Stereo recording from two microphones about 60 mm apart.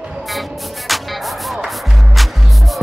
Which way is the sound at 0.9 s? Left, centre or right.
Centre.